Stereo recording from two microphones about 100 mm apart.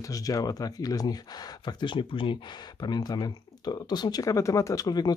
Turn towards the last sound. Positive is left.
turn(degrees=40)  # may be behind; listen again after turning